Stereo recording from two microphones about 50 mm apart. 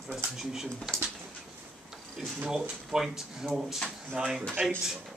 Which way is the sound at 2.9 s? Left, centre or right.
Centre.